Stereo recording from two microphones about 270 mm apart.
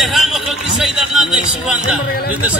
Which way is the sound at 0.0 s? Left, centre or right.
Centre.